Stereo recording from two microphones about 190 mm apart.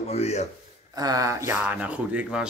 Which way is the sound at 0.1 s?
35° left (ahead or behind).